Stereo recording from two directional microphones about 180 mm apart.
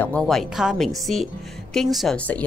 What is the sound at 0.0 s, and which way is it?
A woman's voice, 5° left (ahead or behind).